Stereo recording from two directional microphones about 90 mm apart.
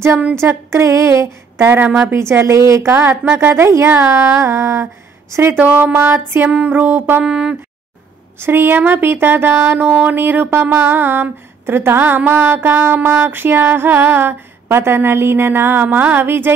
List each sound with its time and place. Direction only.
0.2 s speech: 25° right (ahead or behind)
3.9 s carnatic music: 15° right (ahead or behind)
4.4 s mantra: 30° right (ahead or behind)
5.3 s speech: 25° right (ahead or behind)
7.2 s carnatic music: 10° right (ahead or behind)
8.4 s speech: 25° right (ahead or behind)